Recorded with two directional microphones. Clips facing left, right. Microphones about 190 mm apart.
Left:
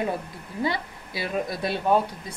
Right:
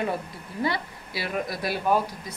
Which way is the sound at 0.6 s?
20° left (ahead or behind).